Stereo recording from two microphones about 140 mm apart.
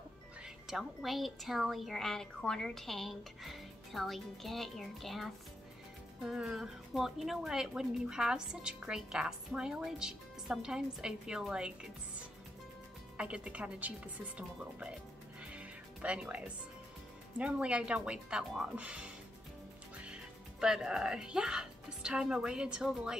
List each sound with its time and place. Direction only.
0.7 s speech: centre (ahead or behind)
13.2 s speech: 10° right (ahead or behind)
15.5 s music: 10° right (ahead or behind)
17.4 s speech: 10° right (ahead or behind)
20.6 s speech: 5° right (ahead or behind)